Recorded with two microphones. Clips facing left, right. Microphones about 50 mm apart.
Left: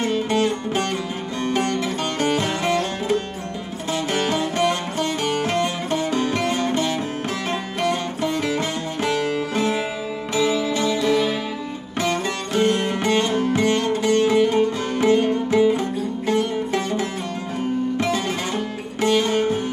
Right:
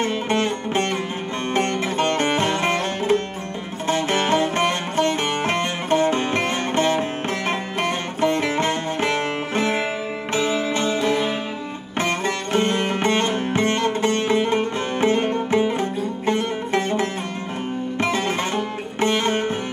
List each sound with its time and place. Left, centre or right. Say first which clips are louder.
0.0 s music: left 1 dB; right